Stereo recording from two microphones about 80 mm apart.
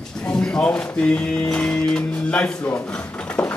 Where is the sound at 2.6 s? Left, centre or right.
Left.